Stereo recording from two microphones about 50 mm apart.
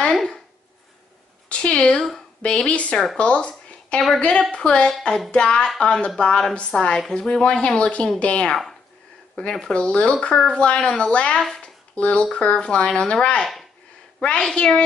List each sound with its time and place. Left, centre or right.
0.1 s speech: centre
1.5 s a sound: centre
2.4 s speech: left
3.2 s a sound: left
4.2 s speech: centre
9.6 s speech: centre
11.3 s speech: centre
11.9 s speech: left